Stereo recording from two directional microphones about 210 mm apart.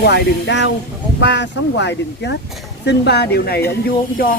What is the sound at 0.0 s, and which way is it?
Speech, 55° left (ahead or behind).